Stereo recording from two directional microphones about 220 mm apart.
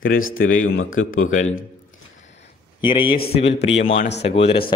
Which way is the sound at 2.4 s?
20° left (ahead or behind).